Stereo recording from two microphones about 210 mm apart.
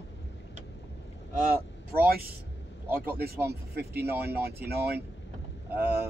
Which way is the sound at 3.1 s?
45° right (ahead or behind).